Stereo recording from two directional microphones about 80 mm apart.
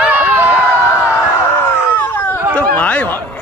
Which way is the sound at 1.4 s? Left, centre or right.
Left.